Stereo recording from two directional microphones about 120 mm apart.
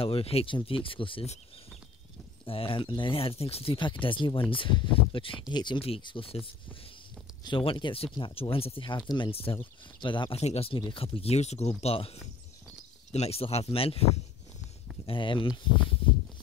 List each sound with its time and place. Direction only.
0.0 s speech: 55° left (ahead or behind)
2.4 s speech: 50° left (ahead or behind)
4.0 s speech: 45° left (ahead or behind)
10.3 s speech: 55° left (ahead or behind)
15.0 s speech: 45° left (ahead or behind)